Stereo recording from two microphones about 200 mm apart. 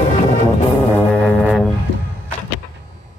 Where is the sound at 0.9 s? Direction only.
5° left (ahead or behind).